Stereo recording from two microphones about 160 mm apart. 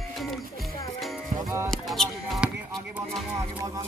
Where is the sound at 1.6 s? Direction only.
5° left (ahead or behind).